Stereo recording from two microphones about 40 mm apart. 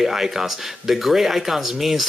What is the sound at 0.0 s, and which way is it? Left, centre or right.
Speech, centre.